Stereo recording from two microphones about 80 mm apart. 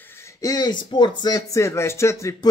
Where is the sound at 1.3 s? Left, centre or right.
Left.